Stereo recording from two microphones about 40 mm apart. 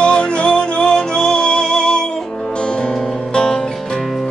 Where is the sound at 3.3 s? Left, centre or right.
Centre.